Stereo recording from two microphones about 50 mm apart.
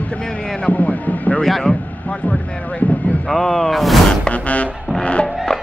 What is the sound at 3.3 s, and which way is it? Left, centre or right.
Speech, centre.